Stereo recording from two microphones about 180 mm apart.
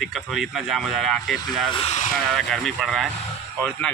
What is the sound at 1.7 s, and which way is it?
Speech, 35° left (ahead or behind).